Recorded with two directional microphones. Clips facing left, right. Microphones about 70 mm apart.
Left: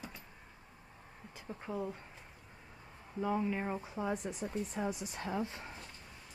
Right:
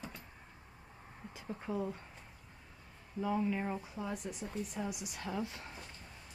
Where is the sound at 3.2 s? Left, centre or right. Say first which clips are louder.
Even; centre.